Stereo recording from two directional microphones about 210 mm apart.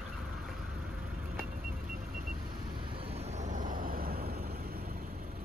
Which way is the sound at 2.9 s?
30° right (ahead or behind).